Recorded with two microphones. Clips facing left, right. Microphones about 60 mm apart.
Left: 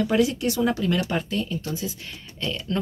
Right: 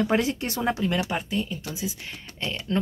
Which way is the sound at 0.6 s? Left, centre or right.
Right.